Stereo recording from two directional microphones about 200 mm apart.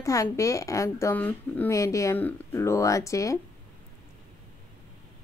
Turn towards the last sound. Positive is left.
turn(degrees=15)  # may be behind; listen again after turning